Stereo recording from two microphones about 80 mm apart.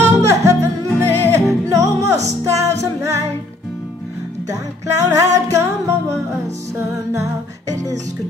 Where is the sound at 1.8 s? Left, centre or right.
Right.